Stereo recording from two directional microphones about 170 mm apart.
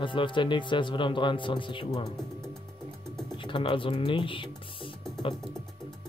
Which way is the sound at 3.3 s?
30° left (ahead or behind).